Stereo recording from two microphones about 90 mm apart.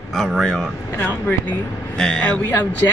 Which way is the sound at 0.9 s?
20° left (ahead or behind).